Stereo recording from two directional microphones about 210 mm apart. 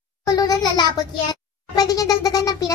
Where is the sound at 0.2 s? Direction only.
20° left (ahead or behind).